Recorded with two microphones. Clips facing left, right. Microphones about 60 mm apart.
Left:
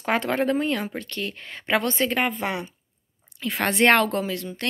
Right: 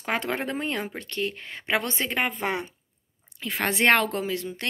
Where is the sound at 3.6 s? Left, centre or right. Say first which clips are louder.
Left 3 dB; centre.